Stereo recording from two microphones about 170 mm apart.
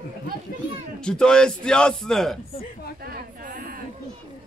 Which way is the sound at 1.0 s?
5° left (ahead or behind).